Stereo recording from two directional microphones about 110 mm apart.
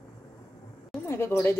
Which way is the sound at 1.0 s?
20° left (ahead or behind).